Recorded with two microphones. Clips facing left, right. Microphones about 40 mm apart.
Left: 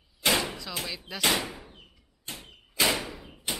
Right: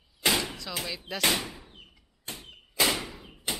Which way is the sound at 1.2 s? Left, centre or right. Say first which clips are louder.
Left 1 dB; centre.